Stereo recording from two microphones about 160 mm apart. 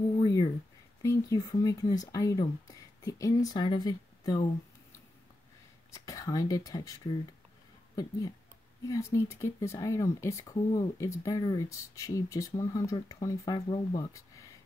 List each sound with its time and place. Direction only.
0.2 s a sound: 25° left (ahead or behind)
1.0 s speech: 20° left (ahead or behind)
5.9 s speech: 20° left (ahead or behind)